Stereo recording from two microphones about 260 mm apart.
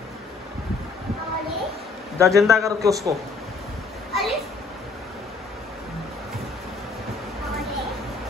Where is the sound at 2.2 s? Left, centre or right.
Centre.